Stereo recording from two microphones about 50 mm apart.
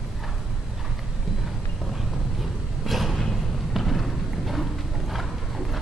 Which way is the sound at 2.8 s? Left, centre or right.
Centre.